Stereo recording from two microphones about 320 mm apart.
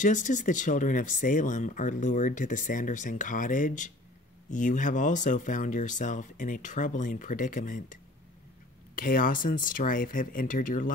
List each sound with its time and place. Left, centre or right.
0.0 s speech: left